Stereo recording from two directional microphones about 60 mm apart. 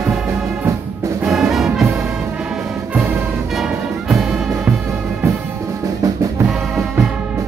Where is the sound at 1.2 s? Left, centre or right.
Centre.